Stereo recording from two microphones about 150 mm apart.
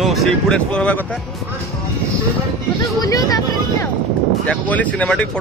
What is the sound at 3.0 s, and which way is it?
Speech, 25° left (ahead or behind).